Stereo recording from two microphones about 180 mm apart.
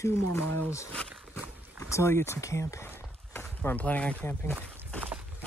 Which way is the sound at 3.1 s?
10° left (ahead or behind).